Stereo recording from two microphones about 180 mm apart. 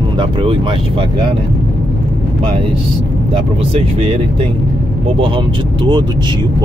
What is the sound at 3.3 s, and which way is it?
Speech, 35° right (ahead or behind).